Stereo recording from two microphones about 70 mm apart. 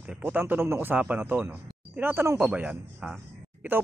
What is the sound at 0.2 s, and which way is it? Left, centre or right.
Speech, right.